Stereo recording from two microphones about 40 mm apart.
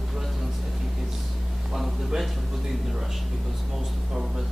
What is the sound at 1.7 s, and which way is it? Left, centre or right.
Speech, centre.